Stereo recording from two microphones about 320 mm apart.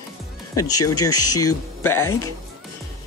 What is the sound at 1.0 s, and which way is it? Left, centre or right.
Speech, centre.